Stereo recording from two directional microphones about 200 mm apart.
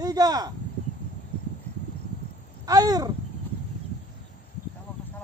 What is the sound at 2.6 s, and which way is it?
Speech, 20° right (ahead or behind).